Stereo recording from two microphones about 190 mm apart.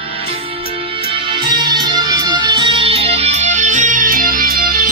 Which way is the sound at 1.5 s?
20° right (ahead or behind).